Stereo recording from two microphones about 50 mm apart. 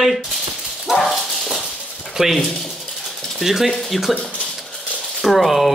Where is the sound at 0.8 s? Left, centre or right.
Centre.